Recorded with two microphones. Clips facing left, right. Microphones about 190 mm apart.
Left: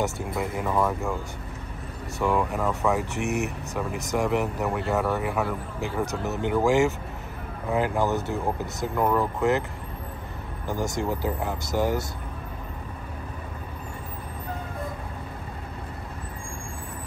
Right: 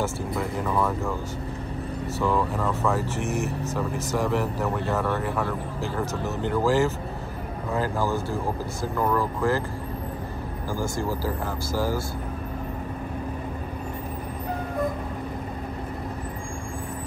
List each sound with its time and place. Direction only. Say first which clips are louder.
0.0 s speech: even; 15° left (ahead or behind)
2.1 s speech: left 1 dB; 15° left (ahead or behind)
3.3 s speech: left 2 dB; 65° left (ahead or behind)
4.1 s speech: left 2 dB; 15° left (ahead or behind)
6.2 s speech: even; 65° left (ahead or behind)
6.5 s speech: left 1 dB; 15° left (ahead or behind)
10.7 s speech: left 1 dB; 20° left (ahead or behind)